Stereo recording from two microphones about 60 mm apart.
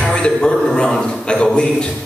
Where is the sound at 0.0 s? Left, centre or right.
Centre.